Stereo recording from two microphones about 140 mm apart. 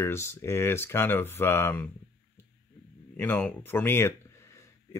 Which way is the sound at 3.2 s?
10° left (ahead or behind).